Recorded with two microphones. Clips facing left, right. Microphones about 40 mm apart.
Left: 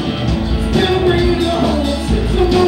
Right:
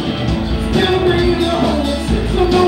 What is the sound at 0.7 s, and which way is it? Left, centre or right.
Music, centre.